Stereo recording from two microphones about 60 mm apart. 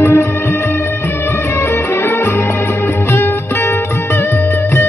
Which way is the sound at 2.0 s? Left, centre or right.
Left.